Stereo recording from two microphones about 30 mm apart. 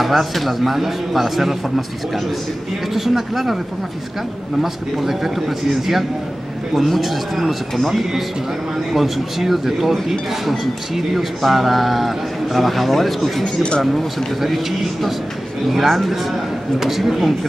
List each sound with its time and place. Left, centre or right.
0.0 s a man's voice: centre
2.9 s speech: centre
4.6 s a man's voice: centre
13.6 s speech: left
14.5 s a man's voice: centre